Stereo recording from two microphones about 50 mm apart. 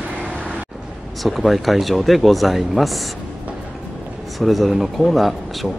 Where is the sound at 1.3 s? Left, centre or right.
Centre.